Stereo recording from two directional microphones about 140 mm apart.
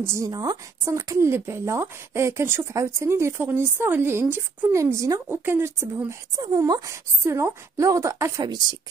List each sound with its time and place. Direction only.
0.0 s a woman's voice: 20° right (ahead or behind)